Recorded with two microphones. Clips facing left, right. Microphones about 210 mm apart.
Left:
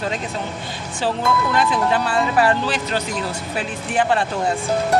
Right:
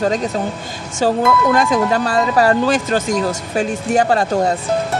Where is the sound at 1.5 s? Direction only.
45° right (ahead or behind).